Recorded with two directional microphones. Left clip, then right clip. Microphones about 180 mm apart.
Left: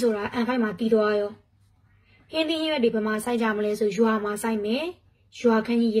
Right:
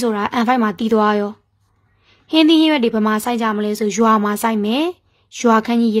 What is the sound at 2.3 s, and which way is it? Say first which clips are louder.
A woman's voice: right 12 dB; 50° right (ahead or behind).